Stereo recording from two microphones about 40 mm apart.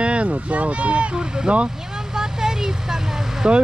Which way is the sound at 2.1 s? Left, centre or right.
Centre.